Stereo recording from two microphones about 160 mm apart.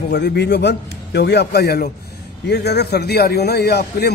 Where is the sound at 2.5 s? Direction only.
90° left.